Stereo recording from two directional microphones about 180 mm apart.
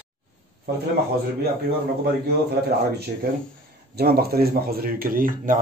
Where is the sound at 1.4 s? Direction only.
60° right (ahead or behind).